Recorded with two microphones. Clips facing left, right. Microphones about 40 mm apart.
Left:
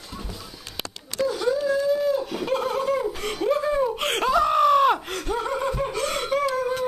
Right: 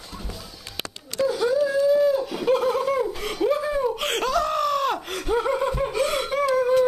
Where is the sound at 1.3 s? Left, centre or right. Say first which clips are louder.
Right 1 dB; centre.